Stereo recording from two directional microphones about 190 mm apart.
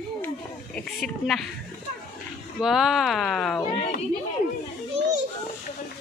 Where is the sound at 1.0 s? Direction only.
Centre (ahead or behind).